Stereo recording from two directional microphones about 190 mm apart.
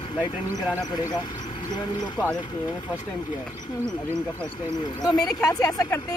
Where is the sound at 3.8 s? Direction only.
15° right (ahead or behind).